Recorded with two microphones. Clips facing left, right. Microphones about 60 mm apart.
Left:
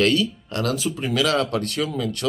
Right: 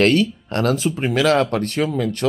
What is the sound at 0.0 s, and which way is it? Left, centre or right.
Speech, right.